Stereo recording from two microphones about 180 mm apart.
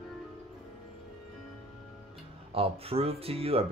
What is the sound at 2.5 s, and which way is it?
Speech, 30° right (ahead or behind).